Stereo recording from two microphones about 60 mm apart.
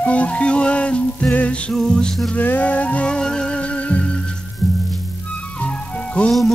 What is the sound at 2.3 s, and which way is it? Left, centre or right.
Music, left.